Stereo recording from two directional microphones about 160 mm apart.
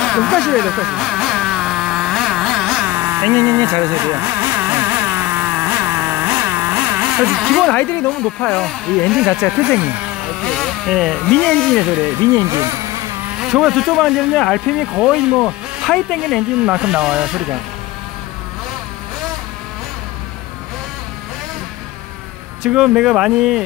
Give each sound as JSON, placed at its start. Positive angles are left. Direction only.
{"t": 0.0, "sound": "vehicle", "side_deg": 0}
{"t": 2.9, "sound": "vehicle", "side_deg": -15}
{"t": 8.4, "sound": "speech", "side_deg": 5}
{"t": 10.4, "sound": "speech", "side_deg": 5}
{"t": 12.4, "sound": "speech", "side_deg": -20}
{"t": 13.4, "sound": "speech", "side_deg": 0}
{"t": 22.6, "sound": "speech", "side_deg": -5}